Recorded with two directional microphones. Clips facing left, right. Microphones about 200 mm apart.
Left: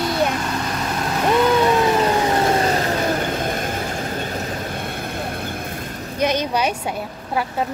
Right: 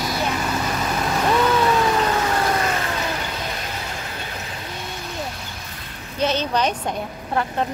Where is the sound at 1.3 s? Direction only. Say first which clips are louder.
Left 3 dB; 15° left (ahead or behind); by 6.2 s 40° left (ahead or behind).